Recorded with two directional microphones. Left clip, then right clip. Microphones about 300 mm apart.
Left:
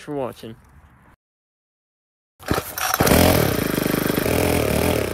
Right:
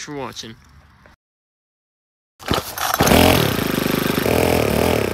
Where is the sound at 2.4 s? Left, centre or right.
Centre.